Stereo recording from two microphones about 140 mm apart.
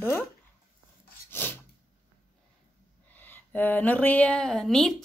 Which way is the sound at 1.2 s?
15° left (ahead or behind).